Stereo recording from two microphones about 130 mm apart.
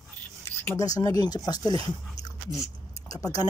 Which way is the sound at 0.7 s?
25° left (ahead or behind).